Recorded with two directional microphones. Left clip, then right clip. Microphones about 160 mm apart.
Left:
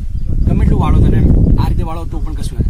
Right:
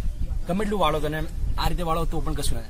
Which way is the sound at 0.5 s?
30° right (ahead or behind).